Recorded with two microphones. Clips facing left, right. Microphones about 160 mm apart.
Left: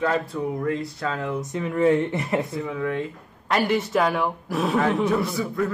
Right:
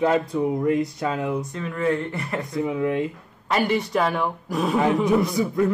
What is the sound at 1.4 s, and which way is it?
Speech, 20° left (ahead or behind).